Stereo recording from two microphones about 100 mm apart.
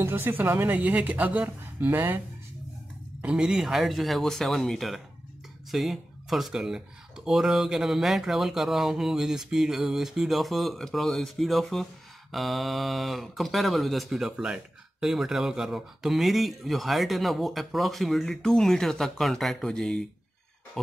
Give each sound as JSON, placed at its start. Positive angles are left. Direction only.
{"t": 0.0, "sound": "speech", "side_deg": -20}
{"t": 3.2, "sound": "speech", "side_deg": -10}